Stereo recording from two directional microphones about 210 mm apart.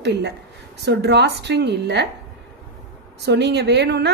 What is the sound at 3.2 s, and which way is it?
Speech, 55° right (ahead or behind).